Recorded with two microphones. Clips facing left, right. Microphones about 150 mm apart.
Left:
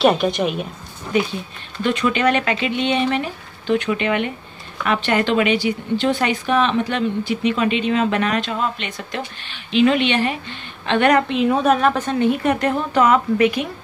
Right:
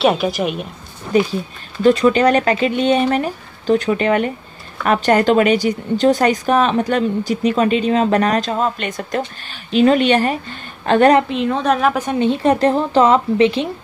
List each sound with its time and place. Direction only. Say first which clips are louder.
0.0 s a woman's voice: even; 5° right (ahead or behind)
1.8 s speech: right 7 dB; 35° right (ahead or behind)
11.2 s a woman's voice: left 1 dB; 5° left (ahead or behind); by 12.3 s 15° right (ahead or behind)
12.3 s a woman's voice: right 6 dB; 30° right (ahead or behind)